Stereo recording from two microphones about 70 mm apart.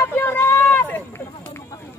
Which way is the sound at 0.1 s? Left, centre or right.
Left.